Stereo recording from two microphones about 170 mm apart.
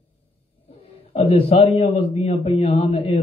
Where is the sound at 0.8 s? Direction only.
35° left (ahead or behind).